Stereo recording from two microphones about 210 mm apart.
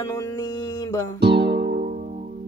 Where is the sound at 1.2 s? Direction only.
50° right (ahead or behind).